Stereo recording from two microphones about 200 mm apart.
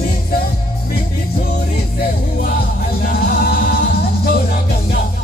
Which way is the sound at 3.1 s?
50° left (ahead or behind).